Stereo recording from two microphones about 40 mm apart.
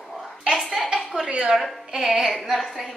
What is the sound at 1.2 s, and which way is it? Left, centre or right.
Speech, right.